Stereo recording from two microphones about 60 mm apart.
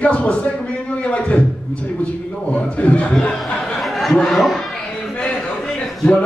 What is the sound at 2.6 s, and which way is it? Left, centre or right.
Speech, left.